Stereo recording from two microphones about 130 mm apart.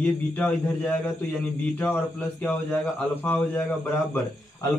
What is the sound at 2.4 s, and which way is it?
Speech, 10° left (ahead or behind).